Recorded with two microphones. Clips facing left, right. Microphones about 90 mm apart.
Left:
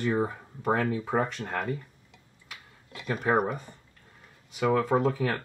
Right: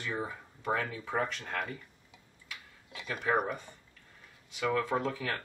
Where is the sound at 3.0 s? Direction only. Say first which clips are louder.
Left 5 dB; 40° left (ahead or behind).